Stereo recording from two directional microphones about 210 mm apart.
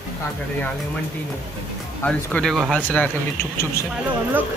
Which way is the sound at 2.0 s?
5° left (ahead or behind).